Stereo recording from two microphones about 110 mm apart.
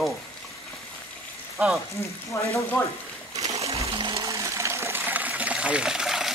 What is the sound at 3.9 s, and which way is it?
Water, 45° right (ahead or behind).